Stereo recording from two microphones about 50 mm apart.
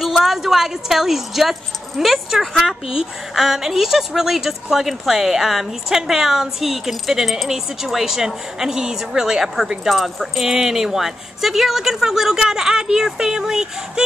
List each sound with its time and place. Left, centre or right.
0.1 s speech: centre
2.4 s a woman's voice: centre
2.9 s a woman's voice: centre